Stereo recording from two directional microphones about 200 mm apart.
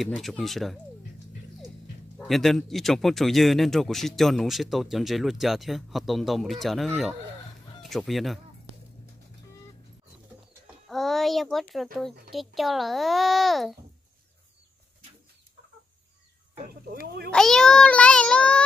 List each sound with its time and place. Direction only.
0.0 s speech: centre (ahead or behind)
2.1 s speech: centre (ahead or behind)
7.9 s speech: centre (ahead or behind)
10.9 s a sound: centre (ahead or behind)
11.7 s speech: centre (ahead or behind)
16.5 s speech: 45° right (ahead or behind)
17.3 s speech: 5° left (ahead or behind)